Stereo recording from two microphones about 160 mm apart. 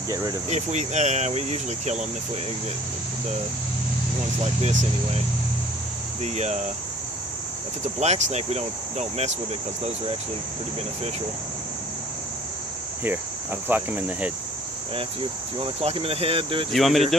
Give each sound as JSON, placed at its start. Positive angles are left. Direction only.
{"t": 0.1, "sound": "speech", "side_deg": -25}
{"t": 0.5, "sound": "speech", "side_deg": -45}
{"t": 4.6, "sound": "speech", "side_deg": -40}
{"t": 6.2, "sound": "speech", "side_deg": -45}
{"t": 8.0, "sound": "speech", "side_deg": -45}
{"t": 13.0, "sound": "speech", "side_deg": -10}
{"t": 15.6, "sound": "speech", "side_deg": -35}
{"t": 16.7, "sound": "speech", "side_deg": 0}